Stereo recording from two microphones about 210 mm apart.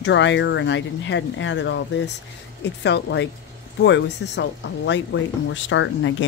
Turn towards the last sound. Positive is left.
turn(degrees=60)  # may be behind; listen again after turning